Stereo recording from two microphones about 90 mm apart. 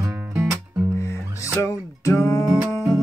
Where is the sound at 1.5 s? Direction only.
30° left (ahead or behind).